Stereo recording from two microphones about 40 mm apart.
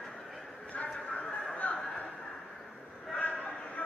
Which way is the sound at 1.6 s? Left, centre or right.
Left.